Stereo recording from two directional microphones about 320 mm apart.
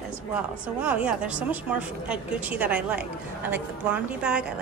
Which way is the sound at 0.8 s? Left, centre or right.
Centre.